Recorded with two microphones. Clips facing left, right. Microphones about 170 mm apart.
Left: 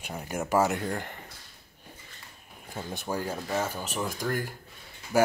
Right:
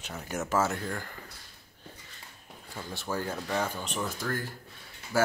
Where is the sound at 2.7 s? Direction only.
20° left (ahead or behind).